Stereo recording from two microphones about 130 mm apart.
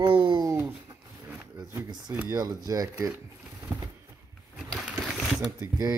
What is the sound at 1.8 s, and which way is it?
Speech, 35° right (ahead or behind).